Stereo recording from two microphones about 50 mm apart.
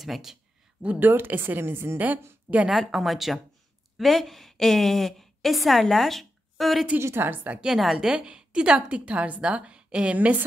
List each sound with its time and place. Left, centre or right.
0.0 s speech: centre
0.8 s a woman's voice: right
2.7 s a woman's voice: centre
7.2 s a woman's voice: right
7.6 s a woman's voice: centre
8.1 s a woman's voice: centre
10.1 s a woman's voice: right